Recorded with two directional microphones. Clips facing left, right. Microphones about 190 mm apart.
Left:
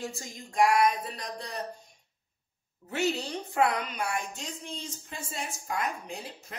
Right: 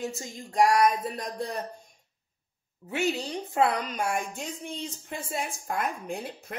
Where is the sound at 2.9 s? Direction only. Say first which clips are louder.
Right 1 dB; 15° right (ahead or behind).